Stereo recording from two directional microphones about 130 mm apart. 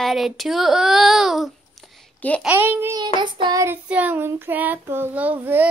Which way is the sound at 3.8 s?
10° right (ahead or behind).